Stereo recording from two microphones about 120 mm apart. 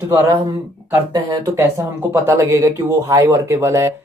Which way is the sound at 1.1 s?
30° right (ahead or behind).